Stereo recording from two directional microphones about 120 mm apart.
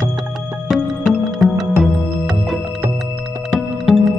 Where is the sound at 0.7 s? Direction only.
Centre (ahead or behind).